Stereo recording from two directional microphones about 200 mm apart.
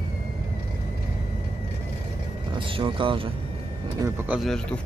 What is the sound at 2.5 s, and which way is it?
Speech, 25° right (ahead or behind).